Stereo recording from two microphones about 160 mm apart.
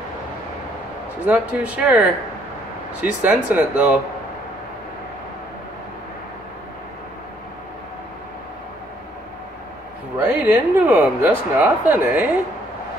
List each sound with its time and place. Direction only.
1.2 s speech: 10° right (ahead or behind)
10.1 s speech: 10° right (ahead or behind)